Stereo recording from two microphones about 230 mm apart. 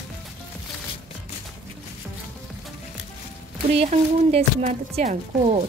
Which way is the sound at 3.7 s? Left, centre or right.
Right.